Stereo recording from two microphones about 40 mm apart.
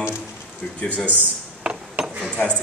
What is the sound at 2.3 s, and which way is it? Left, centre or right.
Speech, left.